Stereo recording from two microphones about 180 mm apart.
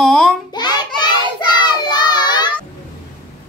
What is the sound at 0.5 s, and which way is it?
Speech, 25° left (ahead or behind).